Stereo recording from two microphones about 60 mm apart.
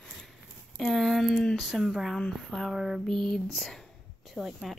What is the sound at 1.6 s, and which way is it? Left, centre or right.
Speech, centre.